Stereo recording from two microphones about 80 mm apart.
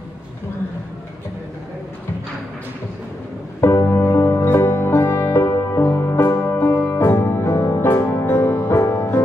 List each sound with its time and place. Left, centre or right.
3.6 s music: left